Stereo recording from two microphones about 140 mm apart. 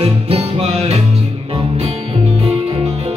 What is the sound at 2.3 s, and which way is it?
Music, 40° right (ahead or behind).